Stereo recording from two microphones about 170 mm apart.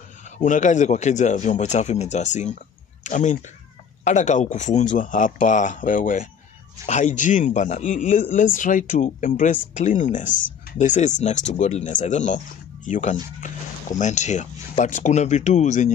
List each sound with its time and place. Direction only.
0.4 s speech: 45° left (ahead or behind)